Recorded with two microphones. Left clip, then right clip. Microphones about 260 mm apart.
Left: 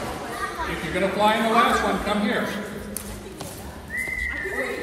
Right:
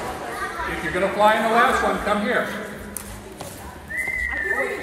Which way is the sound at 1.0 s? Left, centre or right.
Centre.